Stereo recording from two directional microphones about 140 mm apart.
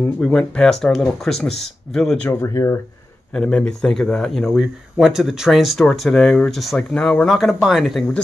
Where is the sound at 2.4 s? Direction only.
20° left (ahead or behind).